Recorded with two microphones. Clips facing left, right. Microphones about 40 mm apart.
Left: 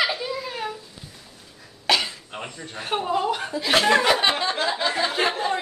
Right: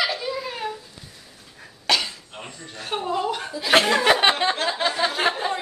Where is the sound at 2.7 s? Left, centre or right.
Centre.